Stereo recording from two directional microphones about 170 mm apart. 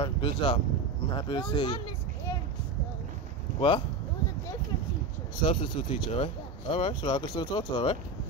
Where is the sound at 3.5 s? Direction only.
30° left (ahead or behind).